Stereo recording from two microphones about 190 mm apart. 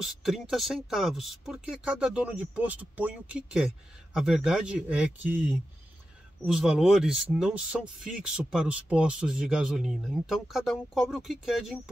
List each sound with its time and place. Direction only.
0.0 s speech: centre (ahead or behind)